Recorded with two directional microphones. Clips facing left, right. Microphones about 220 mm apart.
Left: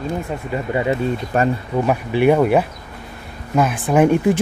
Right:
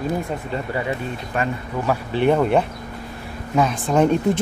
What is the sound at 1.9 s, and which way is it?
Speech, 10° left (ahead or behind).